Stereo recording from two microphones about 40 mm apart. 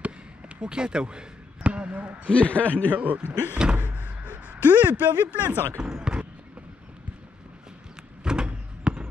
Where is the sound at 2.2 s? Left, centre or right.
Left.